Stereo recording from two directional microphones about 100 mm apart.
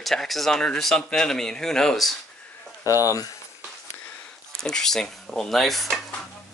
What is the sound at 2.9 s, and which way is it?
Speech, 35° left (ahead or behind).